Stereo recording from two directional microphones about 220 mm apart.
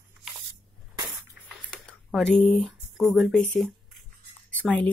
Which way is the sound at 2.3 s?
Centre (ahead or behind).